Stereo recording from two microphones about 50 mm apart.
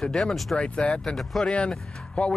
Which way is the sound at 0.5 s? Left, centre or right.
Left.